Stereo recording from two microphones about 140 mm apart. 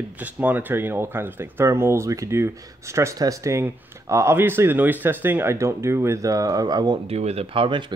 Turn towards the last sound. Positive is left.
turn(degrees=-35)  # may be behind; listen again after turning